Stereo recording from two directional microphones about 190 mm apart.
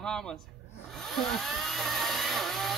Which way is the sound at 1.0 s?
Centre (ahead or behind).